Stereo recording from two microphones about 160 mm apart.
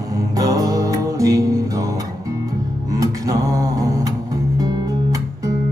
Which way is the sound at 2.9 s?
20° right (ahead or behind).